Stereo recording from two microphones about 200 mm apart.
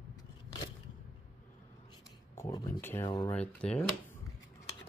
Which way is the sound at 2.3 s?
15° left (ahead or behind).